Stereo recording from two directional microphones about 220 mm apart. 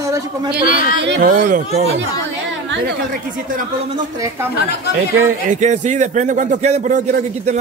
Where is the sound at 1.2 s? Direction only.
35° right (ahead or behind).